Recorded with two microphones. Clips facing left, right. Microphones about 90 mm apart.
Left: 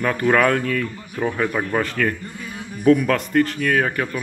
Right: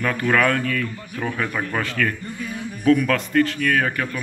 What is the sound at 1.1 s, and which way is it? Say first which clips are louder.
A man's voice: left 4 dB; 20° left (ahead or behind).